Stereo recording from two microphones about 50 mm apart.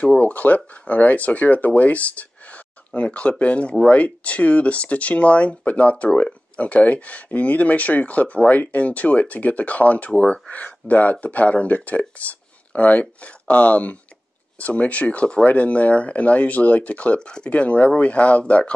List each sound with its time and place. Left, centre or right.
0.2 s speech: left